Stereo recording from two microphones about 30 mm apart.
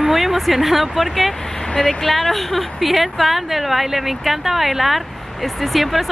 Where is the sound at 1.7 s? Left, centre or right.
Left.